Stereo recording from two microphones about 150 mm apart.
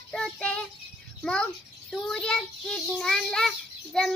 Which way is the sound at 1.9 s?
5° left (ahead or behind).